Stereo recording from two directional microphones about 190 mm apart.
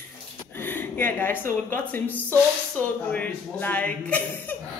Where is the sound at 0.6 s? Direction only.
10° left (ahead or behind).